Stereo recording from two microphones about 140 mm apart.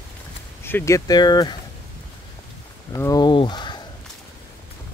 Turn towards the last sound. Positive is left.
turn(degrees=30)  # may be behind; listen again after turning